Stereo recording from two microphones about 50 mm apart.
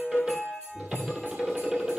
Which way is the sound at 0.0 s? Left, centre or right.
Centre.